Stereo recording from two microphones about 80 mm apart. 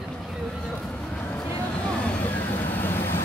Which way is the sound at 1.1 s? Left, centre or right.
Centre.